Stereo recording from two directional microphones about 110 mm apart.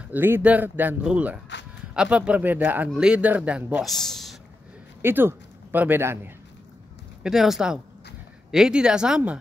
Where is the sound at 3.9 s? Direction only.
5° left (ahead or behind).